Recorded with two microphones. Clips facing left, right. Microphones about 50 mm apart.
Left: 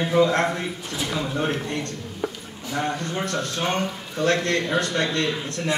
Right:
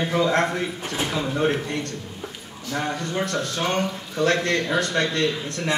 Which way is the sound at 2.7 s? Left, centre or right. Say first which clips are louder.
Even; centre.